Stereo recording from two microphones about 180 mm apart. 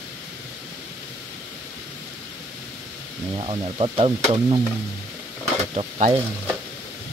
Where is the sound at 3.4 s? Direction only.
30° right (ahead or behind).